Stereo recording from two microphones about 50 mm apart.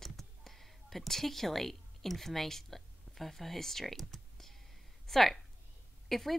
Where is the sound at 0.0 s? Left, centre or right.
Centre.